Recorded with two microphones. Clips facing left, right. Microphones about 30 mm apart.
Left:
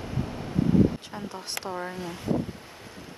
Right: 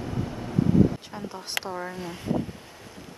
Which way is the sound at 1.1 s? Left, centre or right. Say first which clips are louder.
Even; centre.